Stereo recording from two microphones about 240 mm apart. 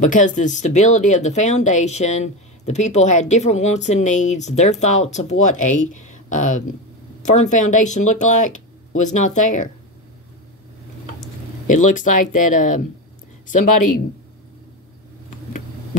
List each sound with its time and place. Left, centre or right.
0.0 s speech: left
11.6 s speech: left